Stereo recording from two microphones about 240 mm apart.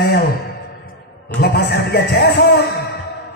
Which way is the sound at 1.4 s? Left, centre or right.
Left.